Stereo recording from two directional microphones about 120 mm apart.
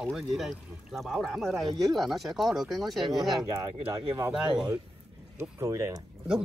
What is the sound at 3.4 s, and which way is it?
Speech, 30° right (ahead or behind).